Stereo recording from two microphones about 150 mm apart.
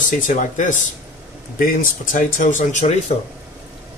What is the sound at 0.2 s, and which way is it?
Speech, 55° left (ahead or behind).